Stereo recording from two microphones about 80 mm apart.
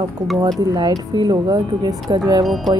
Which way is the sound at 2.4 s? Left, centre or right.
Centre.